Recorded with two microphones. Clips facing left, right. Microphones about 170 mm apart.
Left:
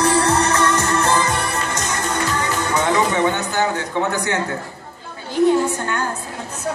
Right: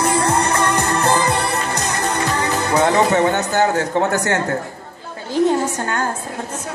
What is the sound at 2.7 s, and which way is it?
Speech, 40° right (ahead or behind).